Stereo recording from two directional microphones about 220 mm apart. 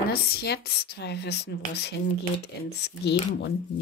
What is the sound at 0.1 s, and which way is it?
Speech, 45° left (ahead or behind).